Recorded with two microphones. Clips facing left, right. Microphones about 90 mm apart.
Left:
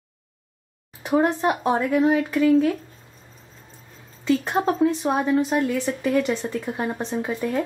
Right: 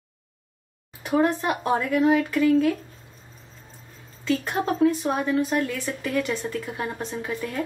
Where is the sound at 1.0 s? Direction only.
20° left (ahead or behind).